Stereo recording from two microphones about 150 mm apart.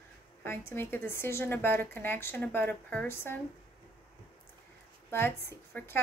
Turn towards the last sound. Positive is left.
turn(degrees=15)  # may be behind; listen again after turning